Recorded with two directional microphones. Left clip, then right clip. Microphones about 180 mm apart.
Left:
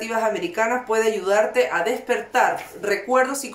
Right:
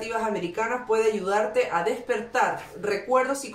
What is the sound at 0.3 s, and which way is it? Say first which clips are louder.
Speech: left 5 dB; 45° left (ahead or behind).